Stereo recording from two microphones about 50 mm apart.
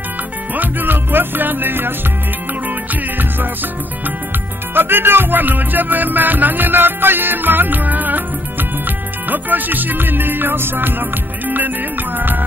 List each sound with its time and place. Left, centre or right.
0.6 s music: right
4.7 s music: right